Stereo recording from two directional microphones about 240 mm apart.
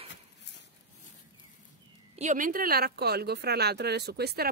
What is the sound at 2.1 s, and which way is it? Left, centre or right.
Speech, right.